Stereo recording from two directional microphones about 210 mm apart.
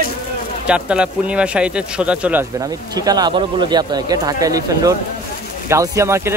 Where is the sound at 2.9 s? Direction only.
20° right (ahead or behind).